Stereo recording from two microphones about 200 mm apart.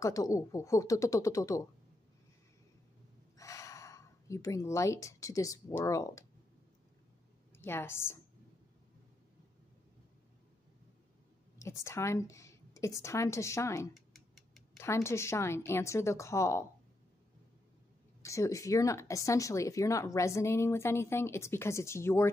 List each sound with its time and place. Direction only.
0.0 s speech: 15° left (ahead or behind)
3.3 s a woman's voice: 15° left (ahead or behind)
7.5 s speech: 10° left (ahead or behind)
11.5 s a woman's voice: 15° left (ahead or behind)
13.9 s a sound: centre (ahead or behind)
14.8 s speech: 15° left (ahead or behind)
18.2 s speech: 15° left (ahead or behind)